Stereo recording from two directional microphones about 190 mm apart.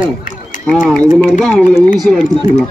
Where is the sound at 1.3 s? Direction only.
5° left (ahead or behind).